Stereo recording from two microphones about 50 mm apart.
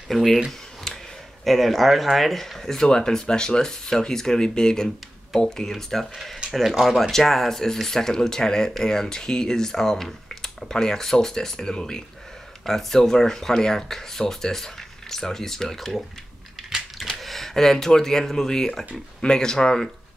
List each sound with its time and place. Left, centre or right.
0.1 s speech: centre
0.9 s a sound: centre
1.4 s speech: centre
7.0 s speech: centre
17.2 s speech: centre